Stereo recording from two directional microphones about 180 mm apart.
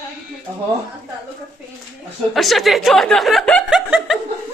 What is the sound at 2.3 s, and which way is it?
Speech, centre (ahead or behind).